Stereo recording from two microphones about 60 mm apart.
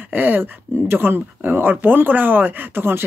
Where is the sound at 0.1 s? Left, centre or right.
Right.